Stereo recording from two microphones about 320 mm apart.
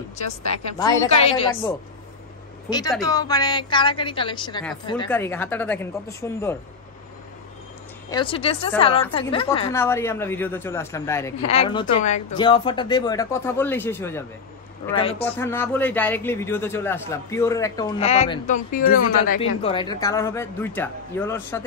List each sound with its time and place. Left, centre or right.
0.7 s a man's voice: centre
3.0 s a man's voice: centre
8.1 s a man's voice: centre
15.2 s a man's voice: centre; by 19.4 s left
19.6 s a man's voice: centre